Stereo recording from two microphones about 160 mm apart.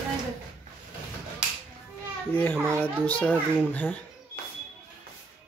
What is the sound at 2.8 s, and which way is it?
Speech, 10° left (ahead or behind).